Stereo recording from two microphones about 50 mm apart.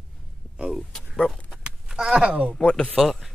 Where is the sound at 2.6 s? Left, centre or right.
Centre.